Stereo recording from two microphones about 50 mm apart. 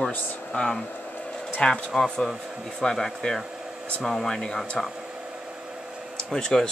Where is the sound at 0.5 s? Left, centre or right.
Left.